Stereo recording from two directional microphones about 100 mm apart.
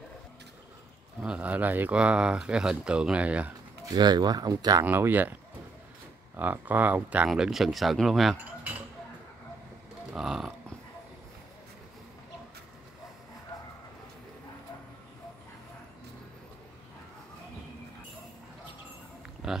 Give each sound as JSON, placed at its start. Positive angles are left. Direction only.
{"t": 1.2, "sound": "speech", "side_deg": -10}
{"t": 3.9, "sound": "speech", "side_deg": -45}
{"t": 4.8, "sound": "speech", "side_deg": -20}
{"t": 7.2, "sound": "speech", "side_deg": -5}
{"t": 10.1, "sound": "speech", "side_deg": -5}
{"t": 19.4, "sound": "speech", "side_deg": -5}